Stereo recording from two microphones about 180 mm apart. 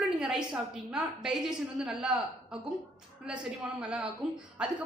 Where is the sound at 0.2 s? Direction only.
5° right (ahead or behind).